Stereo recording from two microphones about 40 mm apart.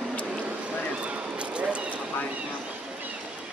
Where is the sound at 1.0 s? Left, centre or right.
Right.